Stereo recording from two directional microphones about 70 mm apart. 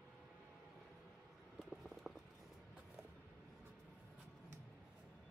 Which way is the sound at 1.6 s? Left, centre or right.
Centre.